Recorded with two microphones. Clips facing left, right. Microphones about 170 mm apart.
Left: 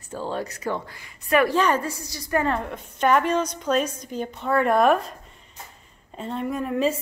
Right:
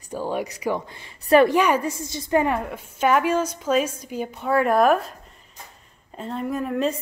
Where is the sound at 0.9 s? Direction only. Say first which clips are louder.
Right 6 dB; 30° right (ahead or behind).